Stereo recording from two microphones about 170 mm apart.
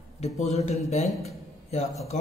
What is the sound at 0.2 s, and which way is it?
Speech, 40° left (ahead or behind).